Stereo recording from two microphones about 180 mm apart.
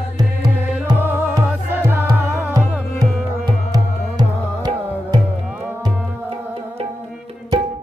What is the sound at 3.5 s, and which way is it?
Music, 20° right (ahead or behind).